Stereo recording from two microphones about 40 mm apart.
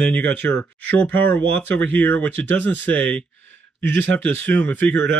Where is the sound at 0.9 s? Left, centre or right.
Left.